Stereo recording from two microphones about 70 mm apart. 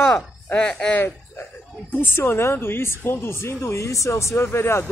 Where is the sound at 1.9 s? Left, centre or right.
Left.